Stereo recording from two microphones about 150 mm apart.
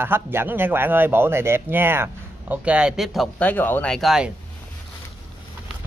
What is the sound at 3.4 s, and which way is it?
Speech, 10° left (ahead or behind).